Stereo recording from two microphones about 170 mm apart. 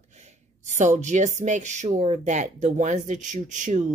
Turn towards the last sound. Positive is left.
turn(degrees=-45)  # may be behind; listen again after turning